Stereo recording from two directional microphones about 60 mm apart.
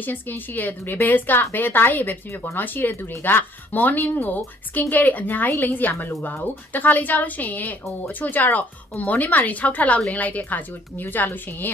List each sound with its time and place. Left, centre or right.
0.0 s a woman's voice: left